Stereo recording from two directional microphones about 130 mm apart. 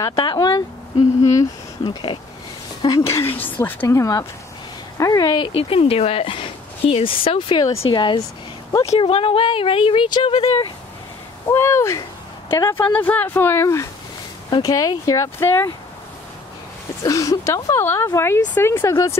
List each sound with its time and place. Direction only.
0.1 s speech: 35° left (ahead or behind)
2.8 s speech: 25° left (ahead or behind)
8.8 s speech: 50° left (ahead or behind); by 10.4 s 35° left (ahead or behind)
11.4 s speech: 20° left (ahead or behind)
17.0 s speech: 25° left (ahead or behind)